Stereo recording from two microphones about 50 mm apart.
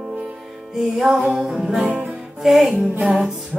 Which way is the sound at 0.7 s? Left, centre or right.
Centre.